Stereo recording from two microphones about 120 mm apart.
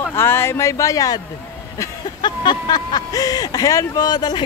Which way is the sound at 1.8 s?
35° left (ahead or behind).